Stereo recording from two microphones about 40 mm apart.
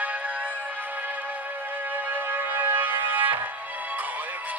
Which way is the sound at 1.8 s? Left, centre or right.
Right.